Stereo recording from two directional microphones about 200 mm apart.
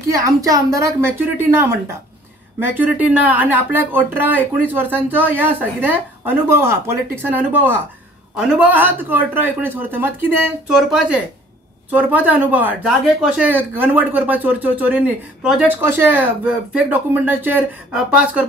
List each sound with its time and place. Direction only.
0.1 s speech: 15° right (ahead or behind)